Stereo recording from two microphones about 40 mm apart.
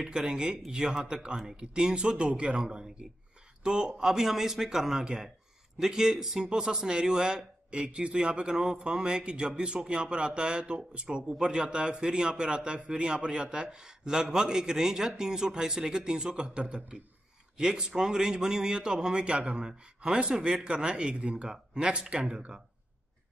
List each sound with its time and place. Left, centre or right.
0.0 s a man's voice: centre